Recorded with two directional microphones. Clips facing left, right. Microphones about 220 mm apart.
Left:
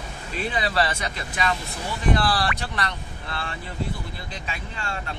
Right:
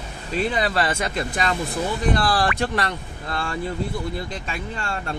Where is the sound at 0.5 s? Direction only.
45° right (ahead or behind).